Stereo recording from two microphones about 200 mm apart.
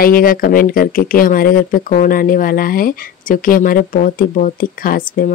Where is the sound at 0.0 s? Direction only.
45° left (ahead or behind).